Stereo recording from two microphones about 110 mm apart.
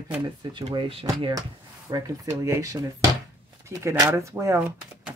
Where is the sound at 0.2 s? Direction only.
45° right (ahead or behind).